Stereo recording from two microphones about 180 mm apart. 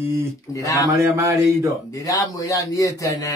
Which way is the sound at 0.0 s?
15° right (ahead or behind).